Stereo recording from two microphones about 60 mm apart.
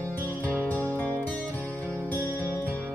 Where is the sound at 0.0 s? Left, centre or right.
Left.